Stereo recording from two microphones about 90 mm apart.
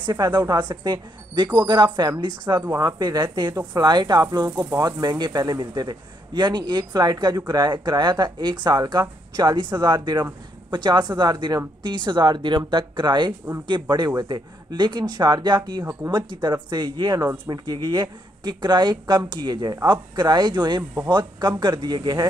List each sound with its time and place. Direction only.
0.0 s a man's voice: 50° right (ahead or behind)
5.0 s a man's voice: 50° right (ahead or behind)